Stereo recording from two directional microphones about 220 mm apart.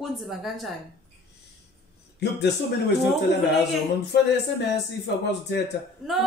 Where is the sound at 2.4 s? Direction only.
50° left (ahead or behind).